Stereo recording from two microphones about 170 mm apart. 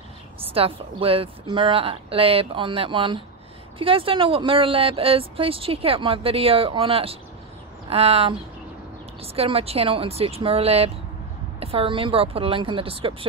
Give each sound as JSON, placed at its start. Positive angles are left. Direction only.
{"t": 0.4, "sound": "speech", "side_deg": -35}